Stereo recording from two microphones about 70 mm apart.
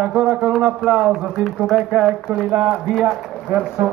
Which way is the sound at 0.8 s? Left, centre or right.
Centre.